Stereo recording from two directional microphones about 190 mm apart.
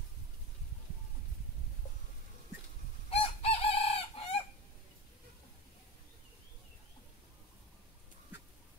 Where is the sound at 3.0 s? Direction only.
30° left (ahead or behind).